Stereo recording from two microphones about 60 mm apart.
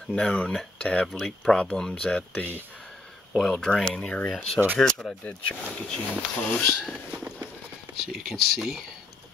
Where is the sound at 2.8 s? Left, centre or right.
Centre.